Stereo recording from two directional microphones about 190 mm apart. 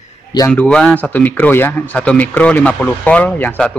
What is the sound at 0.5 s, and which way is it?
Speech, 5° left (ahead or behind).